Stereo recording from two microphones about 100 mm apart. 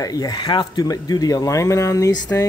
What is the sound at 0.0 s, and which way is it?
Speech, 40° left (ahead or behind).